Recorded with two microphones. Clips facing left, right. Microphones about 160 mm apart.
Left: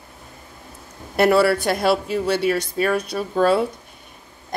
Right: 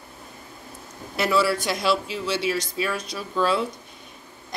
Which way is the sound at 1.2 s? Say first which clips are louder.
Left 6 dB; 60° left (ahead or behind).